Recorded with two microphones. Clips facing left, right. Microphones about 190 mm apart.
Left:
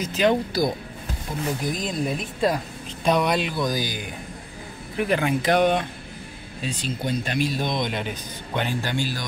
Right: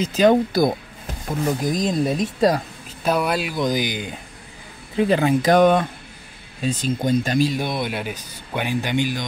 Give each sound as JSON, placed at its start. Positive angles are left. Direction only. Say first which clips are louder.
{"t": 0.1, "sound": "speech", "louder": "right 5 dB", "side_deg": -45}
{"t": 1.4, "sound": "speech", "louder": "right 6 dB", "side_deg": -40}
{"t": 3.0, "sound": "speech", "louder": "even", "side_deg": -5}
{"t": 3.5, "sound": "speech", "louder": "right 4 dB", "side_deg": -20}
{"t": 7.5, "sound": "speech", "louder": "right 1 dB", "side_deg": -10}